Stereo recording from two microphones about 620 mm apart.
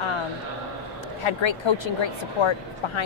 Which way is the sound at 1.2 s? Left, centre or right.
Left.